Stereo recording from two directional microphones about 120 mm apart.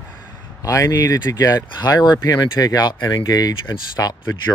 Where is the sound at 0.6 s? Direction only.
25° left (ahead or behind).